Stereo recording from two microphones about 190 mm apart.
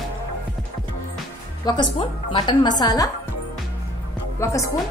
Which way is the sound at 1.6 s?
20° left (ahead or behind).